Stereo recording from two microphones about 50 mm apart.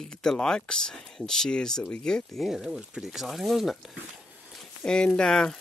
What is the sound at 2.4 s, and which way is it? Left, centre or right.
Speech, centre.